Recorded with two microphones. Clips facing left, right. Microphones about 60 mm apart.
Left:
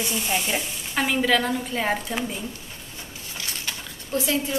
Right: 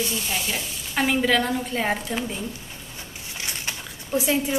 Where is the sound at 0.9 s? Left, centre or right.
Centre.